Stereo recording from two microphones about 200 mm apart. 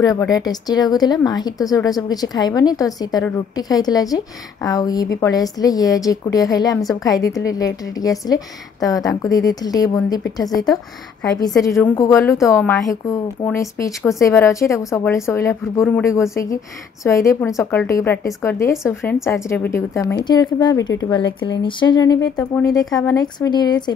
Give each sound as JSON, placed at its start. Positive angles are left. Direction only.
{"t": 0.0, "sound": "a woman's voice", "side_deg": 15}